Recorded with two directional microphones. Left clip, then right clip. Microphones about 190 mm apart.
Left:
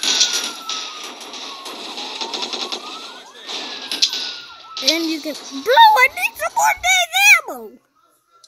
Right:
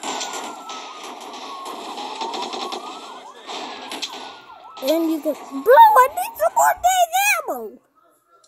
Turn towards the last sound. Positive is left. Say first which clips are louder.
# left 5 dB
turn(degrees=20)  # may be behind; listen again after turning